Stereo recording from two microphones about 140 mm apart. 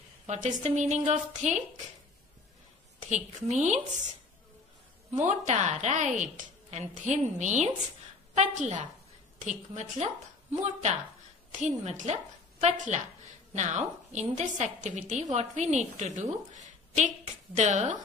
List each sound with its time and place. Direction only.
0.3 s a woman's voice: 55° right (ahead or behind)
3.1 s a woman's voice: 55° right (ahead or behind)
5.1 s a woman's voice: 55° right (ahead or behind)